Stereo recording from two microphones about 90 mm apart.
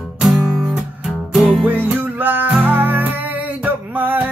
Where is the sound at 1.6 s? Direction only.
20° right (ahead or behind).